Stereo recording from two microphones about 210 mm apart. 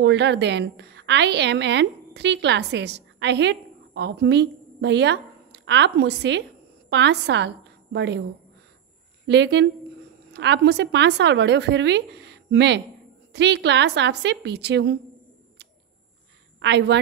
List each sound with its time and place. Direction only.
0.0 s a woman's voice: 55° right (ahead or behind)
9.3 s a woman's voice: 55° right (ahead or behind)
16.5 s a woman's voice: 55° right (ahead or behind)